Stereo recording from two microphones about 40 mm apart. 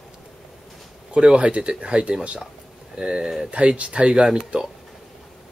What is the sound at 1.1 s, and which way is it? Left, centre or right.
Speech, right.